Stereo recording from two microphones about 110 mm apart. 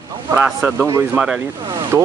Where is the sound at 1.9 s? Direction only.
20° right (ahead or behind).